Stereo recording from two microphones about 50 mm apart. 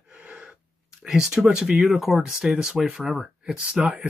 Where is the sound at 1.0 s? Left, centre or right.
Centre.